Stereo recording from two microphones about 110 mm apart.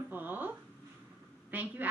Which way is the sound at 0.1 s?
15° right (ahead or behind).